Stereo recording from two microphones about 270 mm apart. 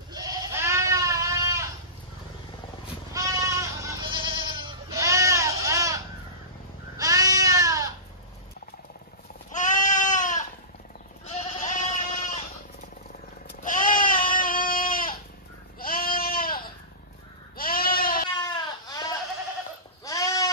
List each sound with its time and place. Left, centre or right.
0.1 s goat: centre
3.1 s goat: centre
9.5 s goat: left
11.3 s sheep: left
13.5 s goat: left
18.4 s goat: centre
20.1 s goat: centre